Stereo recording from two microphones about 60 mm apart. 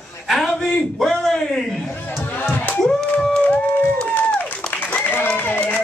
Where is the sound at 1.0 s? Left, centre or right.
Centre.